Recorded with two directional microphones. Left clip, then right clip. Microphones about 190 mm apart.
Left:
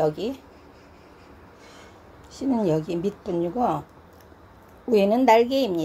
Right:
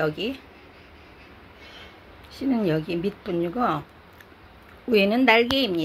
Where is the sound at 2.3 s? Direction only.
Centre (ahead or behind).